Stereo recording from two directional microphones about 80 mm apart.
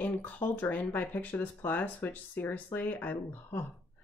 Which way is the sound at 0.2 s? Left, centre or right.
Left.